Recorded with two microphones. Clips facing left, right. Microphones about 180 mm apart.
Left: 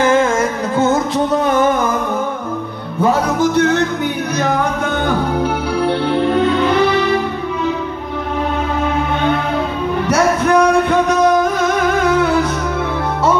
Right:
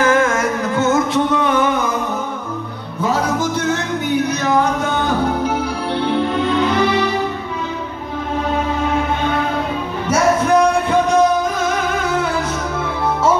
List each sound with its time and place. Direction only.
0.7 s music: 35° left (ahead or behind)
3.0 s music: 60° left (ahead or behind)
10.0 s a sound: 65° left (ahead or behind)